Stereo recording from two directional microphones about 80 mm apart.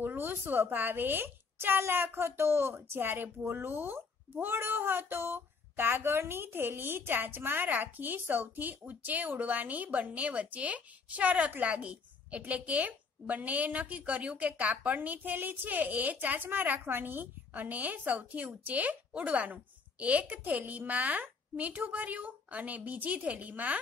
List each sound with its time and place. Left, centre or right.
0.0 s a woman's voice: right